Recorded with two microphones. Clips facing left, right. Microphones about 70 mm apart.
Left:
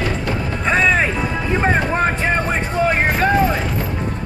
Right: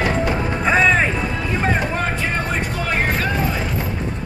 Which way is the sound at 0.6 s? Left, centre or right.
Centre.